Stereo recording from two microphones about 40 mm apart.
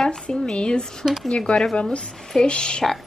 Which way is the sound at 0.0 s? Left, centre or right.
Centre.